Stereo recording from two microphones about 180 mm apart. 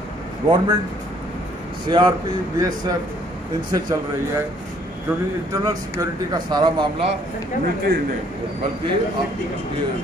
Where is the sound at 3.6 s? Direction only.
20° right (ahead or behind).